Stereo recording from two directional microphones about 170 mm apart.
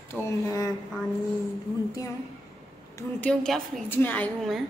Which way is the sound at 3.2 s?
5° left (ahead or behind).